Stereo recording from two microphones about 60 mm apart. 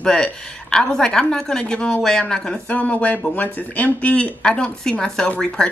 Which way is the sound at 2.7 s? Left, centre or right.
Left.